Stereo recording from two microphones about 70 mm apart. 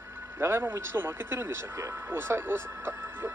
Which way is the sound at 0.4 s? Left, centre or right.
Right.